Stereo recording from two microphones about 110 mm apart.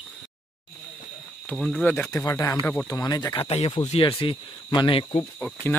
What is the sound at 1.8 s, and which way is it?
Speech, 10° left (ahead or behind).